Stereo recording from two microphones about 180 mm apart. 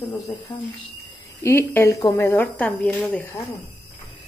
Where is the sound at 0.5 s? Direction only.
20° left (ahead or behind).